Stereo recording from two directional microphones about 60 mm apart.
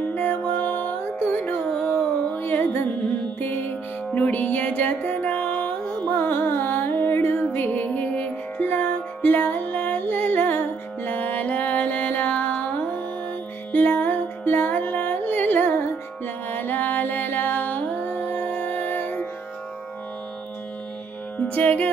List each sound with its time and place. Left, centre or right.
0.1 s music: left
6.1 s music: left
21.5 s music: left